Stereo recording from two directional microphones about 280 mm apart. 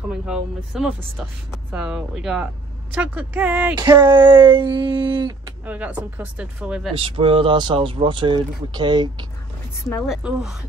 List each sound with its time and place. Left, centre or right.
0.3 s speech: centre
5.7 s speech: centre
7.0 s speech: centre
10.0 s speech: centre